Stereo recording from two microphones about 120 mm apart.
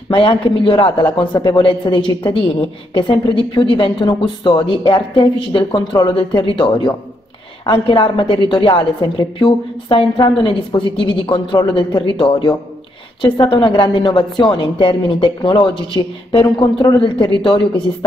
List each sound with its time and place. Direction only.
0.1 s a woman's voice: 45° left (ahead or behind)